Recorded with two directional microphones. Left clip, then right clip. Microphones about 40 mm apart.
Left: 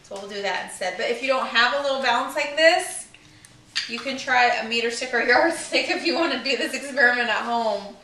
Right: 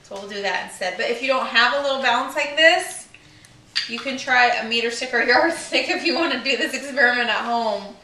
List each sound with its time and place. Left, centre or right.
0.2 s a woman's voice: centre